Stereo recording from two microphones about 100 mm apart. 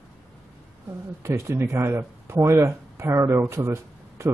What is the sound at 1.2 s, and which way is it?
Speech, 25° right (ahead or behind).